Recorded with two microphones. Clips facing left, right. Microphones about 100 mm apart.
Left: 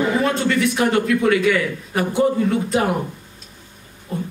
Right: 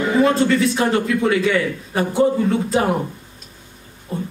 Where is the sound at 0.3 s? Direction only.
30° right (ahead or behind).